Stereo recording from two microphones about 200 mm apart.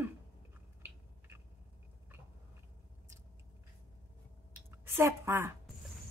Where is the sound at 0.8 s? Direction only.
10° right (ahead or behind).